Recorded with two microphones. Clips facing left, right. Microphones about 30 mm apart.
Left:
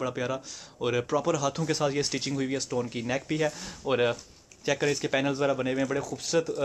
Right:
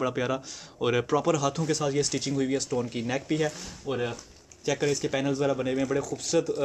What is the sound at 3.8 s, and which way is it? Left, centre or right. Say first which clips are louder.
Speech: left 5 dB; left.